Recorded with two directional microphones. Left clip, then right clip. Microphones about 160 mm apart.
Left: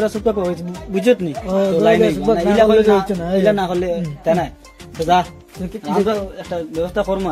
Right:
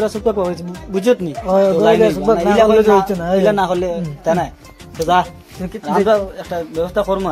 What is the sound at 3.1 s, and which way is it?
Speech, 5° left (ahead or behind).